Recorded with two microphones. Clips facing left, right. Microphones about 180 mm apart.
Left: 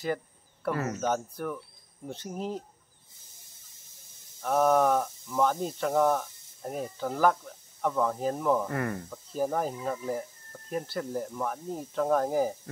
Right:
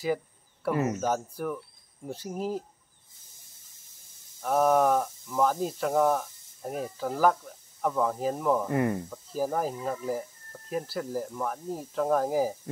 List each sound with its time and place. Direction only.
0.7 s speech: 20° right (ahead or behind)
1.0 s speech: 5° right (ahead or behind)
4.4 s speech: centre (ahead or behind)
8.6 s speech: 20° right (ahead or behind)
9.1 s speech: 5° right (ahead or behind)